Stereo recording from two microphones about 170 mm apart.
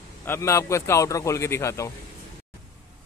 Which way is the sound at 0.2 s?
15° left (ahead or behind).